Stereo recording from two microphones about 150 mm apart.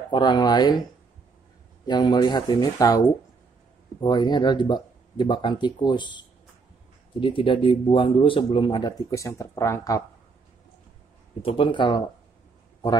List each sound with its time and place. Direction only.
0.1 s speech: 30° left (ahead or behind)
1.9 s speech: 30° left (ahead or behind)
4.0 s speech: 30° left (ahead or behind)
11.4 s speech: 35° left (ahead or behind)